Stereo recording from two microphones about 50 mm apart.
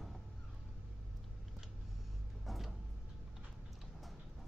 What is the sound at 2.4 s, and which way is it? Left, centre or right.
Tick-tock, centre.